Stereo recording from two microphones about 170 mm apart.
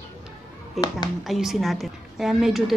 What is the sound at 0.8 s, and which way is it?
A woman's voice, centre (ahead or behind).